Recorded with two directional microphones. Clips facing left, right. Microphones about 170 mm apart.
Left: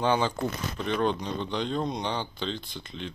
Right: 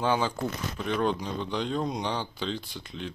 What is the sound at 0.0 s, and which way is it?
Speech, 5° right (ahead or behind).